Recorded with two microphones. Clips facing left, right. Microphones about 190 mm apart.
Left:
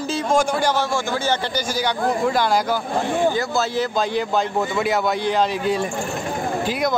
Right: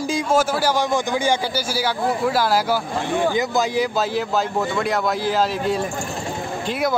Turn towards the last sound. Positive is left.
turn(degrees=0)  # may be behind; listen again after turning